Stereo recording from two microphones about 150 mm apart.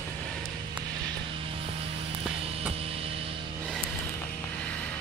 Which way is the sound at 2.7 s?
40° right (ahead or behind).